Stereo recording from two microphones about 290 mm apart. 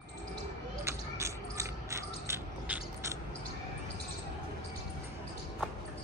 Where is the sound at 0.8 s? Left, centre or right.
Centre.